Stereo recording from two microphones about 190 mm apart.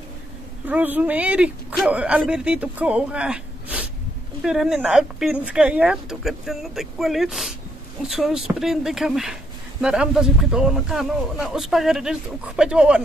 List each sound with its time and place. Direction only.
0.7 s speech: 10° right (ahead or behind)